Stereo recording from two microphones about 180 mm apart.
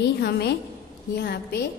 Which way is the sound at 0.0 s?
65° left (ahead or behind).